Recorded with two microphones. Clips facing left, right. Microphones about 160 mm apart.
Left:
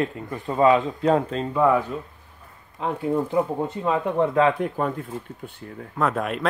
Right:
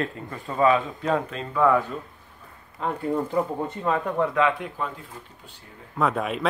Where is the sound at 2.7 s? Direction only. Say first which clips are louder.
Left 2 dB; 5° left (ahead or behind).